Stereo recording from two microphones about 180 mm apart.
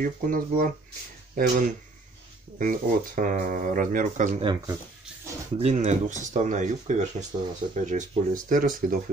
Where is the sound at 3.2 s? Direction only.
45° right (ahead or behind).